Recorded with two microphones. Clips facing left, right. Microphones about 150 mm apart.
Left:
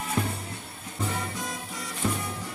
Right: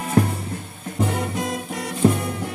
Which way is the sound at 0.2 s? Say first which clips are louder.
Right 11 dB; 85° right.